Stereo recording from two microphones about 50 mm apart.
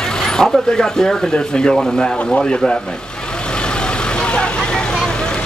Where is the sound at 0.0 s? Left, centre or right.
Centre.